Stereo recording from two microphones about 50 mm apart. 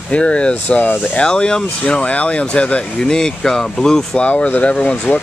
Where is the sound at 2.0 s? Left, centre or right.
Left.